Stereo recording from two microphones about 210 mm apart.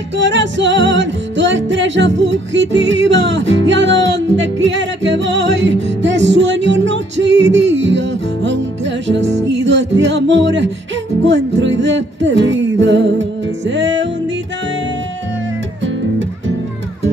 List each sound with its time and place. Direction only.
0.2 s music: 60° right (ahead or behind)